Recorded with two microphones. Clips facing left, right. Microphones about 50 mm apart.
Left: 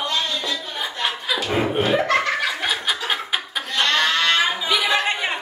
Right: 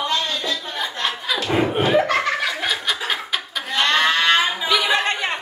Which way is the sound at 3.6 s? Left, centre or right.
Centre.